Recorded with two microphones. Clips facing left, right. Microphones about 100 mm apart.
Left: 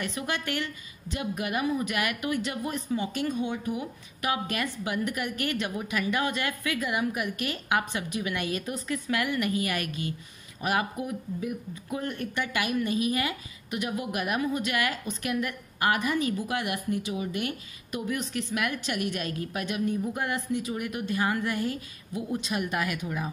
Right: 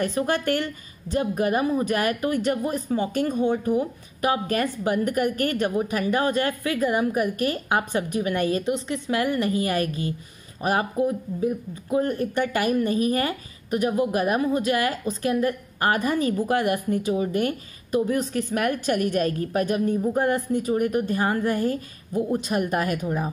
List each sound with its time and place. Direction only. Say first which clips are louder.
0.0 s speech: right 8 dB; 40° right (ahead or behind)
8.6 s speech: right 6 dB; 25° right (ahead or behind)